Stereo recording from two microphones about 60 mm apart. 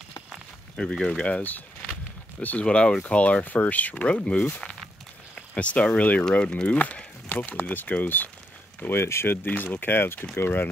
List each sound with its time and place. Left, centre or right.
0.7 s speech: centre; by 8.3 s left
8.8 s speech: left